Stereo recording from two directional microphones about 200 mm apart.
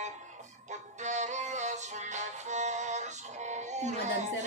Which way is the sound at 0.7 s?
35° right (ahead or behind).